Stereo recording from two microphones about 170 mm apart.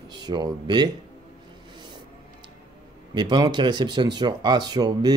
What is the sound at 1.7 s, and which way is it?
Music, 25° right (ahead or behind).